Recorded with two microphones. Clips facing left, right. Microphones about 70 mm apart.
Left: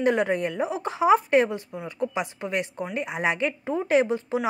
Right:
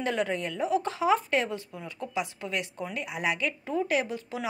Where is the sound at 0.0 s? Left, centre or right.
Left.